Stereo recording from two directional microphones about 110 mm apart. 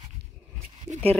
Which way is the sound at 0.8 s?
75° right (ahead or behind).